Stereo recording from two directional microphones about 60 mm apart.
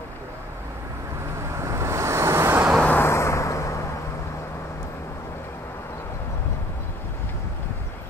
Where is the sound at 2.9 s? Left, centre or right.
Left.